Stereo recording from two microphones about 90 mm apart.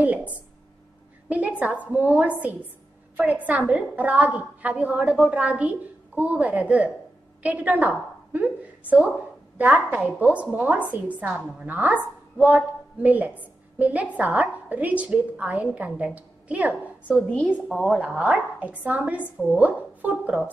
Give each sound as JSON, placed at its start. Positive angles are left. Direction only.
{"t": 0.0, "sound": "a sound", "side_deg": -15}
{"t": 1.6, "sound": "a woman's voice", "side_deg": -15}
{"t": 9.6, "sound": "a woman's voice", "side_deg": -20}
{"t": 17.3, "sound": "a woman's voice", "side_deg": 15}
{"t": 17.6, "sound": "a woman's voice", "side_deg": 5}
{"t": 18.0, "sound": "a woman's voice", "side_deg": -15}